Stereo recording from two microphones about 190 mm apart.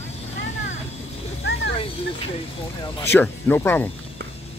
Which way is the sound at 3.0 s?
10° left (ahead or behind).